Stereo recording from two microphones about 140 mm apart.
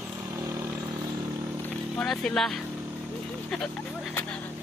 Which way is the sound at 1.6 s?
5° left (ahead or behind).